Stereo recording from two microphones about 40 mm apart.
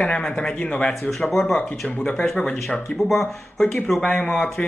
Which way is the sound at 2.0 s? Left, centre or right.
Left.